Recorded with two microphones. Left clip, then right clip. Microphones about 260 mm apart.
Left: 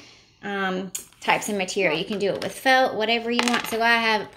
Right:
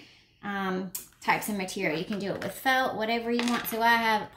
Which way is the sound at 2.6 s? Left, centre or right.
Right.